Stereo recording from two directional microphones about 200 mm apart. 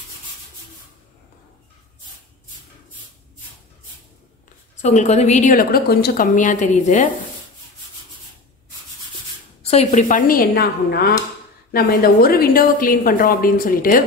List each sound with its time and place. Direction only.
4.8 s a woman's voice: 35° left (ahead or behind)
9.6 s a woman's voice: 30° left (ahead or behind)